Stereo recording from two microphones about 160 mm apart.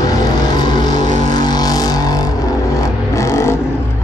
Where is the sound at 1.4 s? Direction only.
25° left (ahead or behind).